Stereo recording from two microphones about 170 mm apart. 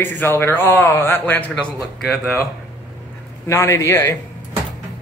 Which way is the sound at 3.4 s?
15° left (ahead or behind).